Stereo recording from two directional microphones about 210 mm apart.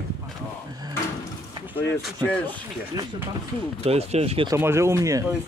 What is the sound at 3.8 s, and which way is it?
Speech, 30° right (ahead or behind).